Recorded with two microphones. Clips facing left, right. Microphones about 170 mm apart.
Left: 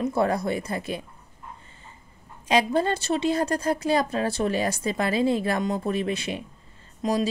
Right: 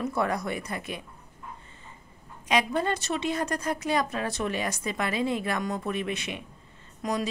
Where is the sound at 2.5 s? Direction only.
30° left (ahead or behind).